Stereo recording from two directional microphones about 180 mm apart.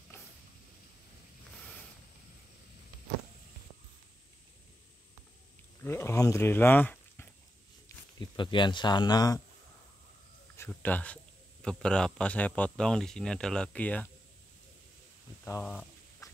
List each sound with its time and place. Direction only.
0.1 s a sound: 15° left (ahead or behind)
5.8 s speech: 15° left (ahead or behind)
8.4 s speech: 25° left (ahead or behind)
10.7 s speech: 10° left (ahead or behind)
15.6 s speech: 5° left (ahead or behind)